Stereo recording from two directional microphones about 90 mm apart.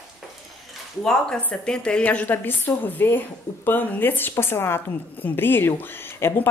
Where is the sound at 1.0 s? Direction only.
5° left (ahead or behind).